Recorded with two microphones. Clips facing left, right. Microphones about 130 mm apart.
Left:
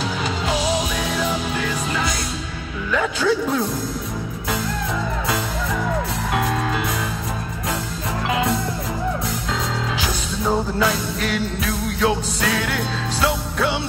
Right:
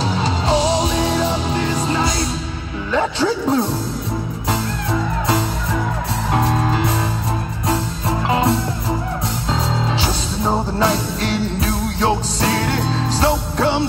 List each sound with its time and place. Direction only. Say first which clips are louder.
0.1 s music: right 5 dB; 30° right (ahead or behind)
6.3 s music: right 4 dB; 30° right (ahead or behind)
8.3 s music: right 3 dB; 30° right (ahead or behind)